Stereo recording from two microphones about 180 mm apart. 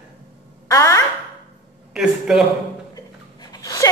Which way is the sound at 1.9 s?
5° right (ahead or behind).